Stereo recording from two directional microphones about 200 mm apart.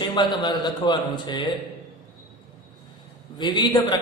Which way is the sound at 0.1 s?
20° left (ahead or behind).